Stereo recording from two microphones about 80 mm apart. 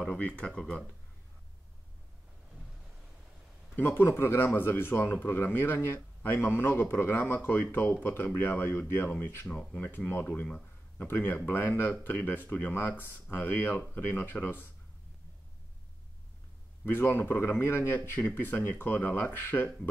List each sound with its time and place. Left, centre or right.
0.0 s speech: centre
3.7 s speech: left
16.8 s speech: left